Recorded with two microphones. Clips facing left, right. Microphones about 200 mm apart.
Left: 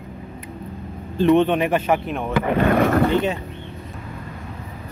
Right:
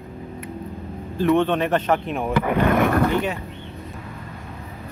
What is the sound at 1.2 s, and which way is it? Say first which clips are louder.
Speech: left 3 dB; 15° left (ahead or behind).